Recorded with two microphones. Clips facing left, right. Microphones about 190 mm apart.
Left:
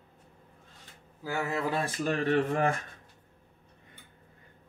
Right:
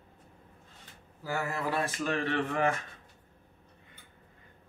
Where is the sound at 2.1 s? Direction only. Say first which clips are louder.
Left 7 dB; 40° left (ahead or behind).